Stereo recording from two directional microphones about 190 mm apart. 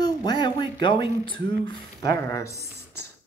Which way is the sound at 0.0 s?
20° left (ahead or behind).